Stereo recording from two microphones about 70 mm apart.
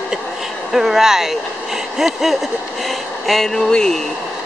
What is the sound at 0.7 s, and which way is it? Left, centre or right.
Speech, centre.